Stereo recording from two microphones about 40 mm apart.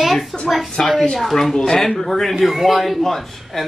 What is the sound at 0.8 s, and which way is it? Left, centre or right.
Speech, centre.